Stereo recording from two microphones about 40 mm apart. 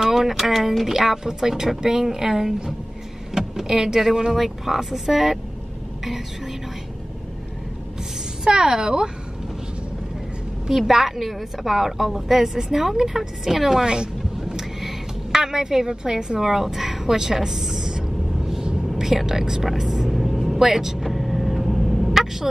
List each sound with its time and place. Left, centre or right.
0.0 s a woman's voice: centre
8.5 s a woman's voice: centre
10.7 s a woman's voice: centre
13.8 s a sound: centre
19.1 s a woman's voice: centre
19.7 s vehicle: centre
22.2 s turkey: centre